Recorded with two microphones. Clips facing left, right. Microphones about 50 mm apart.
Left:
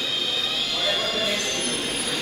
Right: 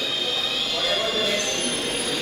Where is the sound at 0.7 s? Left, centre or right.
Centre.